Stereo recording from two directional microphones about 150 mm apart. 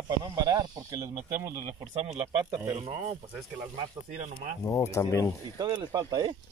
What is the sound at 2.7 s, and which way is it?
Speech, 45° right (ahead or behind).